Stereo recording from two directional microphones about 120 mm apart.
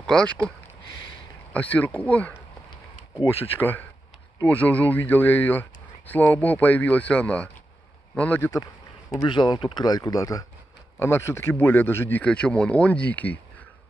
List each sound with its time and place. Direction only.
0.0 s speech: 10° left (ahead or behind)
1.5 s speech: 10° left (ahead or behind)
2.7 s a sound: 40° left (ahead or behind)
4.5 s speech: 10° left (ahead or behind)
9.2 s speech: 40° left (ahead or behind); by 13.4 s 15° left (ahead or behind)